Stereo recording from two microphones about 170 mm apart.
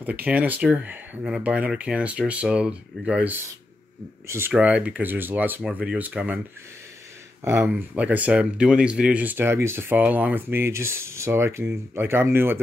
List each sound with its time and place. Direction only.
0.0 s speech: 10° right (ahead or behind)
7.4 s speech: 10° right (ahead or behind)